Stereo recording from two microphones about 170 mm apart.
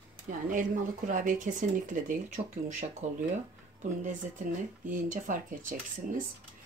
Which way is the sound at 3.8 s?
50° right (ahead or behind).